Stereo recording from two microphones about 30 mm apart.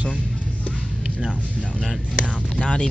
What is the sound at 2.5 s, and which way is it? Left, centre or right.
Speech, left.